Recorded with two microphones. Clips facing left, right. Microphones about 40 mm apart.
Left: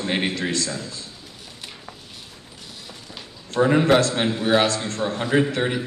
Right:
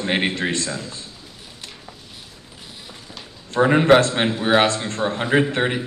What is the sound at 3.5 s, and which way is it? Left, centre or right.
A man's voice, right.